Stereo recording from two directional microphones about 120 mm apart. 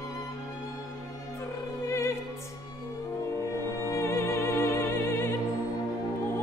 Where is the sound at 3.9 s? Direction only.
25° left (ahead or behind).